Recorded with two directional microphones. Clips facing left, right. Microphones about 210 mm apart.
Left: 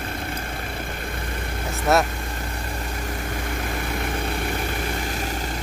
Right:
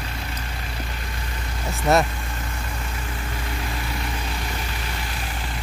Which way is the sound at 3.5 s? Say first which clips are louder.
Left 2 dB; 50° left (ahead or behind).